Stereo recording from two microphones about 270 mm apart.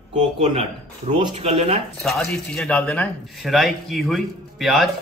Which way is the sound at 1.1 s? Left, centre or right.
Right.